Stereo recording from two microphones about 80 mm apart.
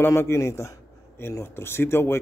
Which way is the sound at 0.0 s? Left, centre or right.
Left.